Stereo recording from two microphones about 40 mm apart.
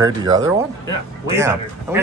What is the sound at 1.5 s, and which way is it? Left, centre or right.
Speech, right.